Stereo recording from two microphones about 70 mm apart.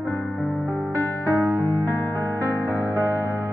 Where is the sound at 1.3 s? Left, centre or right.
Right.